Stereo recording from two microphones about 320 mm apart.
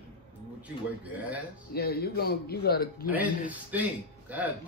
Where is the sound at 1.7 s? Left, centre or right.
Left.